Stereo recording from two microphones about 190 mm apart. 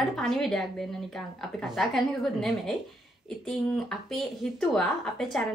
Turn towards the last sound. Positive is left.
turn(degrees=0)  # may be behind; listen again after turning